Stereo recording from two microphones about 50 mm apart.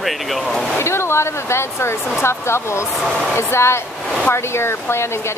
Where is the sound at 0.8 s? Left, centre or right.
Left.